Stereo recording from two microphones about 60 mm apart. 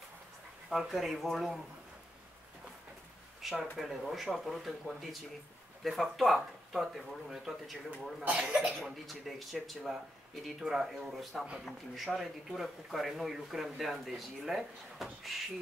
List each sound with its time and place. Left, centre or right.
0.7 s speech: centre
3.4 s speech: centre
8.2 s speech: right
8.7 s speech: centre